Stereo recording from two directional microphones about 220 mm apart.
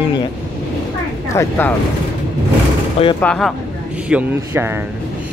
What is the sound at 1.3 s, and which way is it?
Speech, 15° left (ahead or behind).